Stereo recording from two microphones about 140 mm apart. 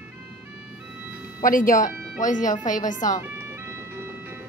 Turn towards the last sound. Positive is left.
turn(degrees=65)  # may be behind; listen again after turning